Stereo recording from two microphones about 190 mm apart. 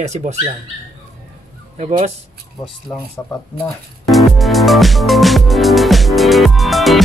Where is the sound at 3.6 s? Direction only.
Centre (ahead or behind).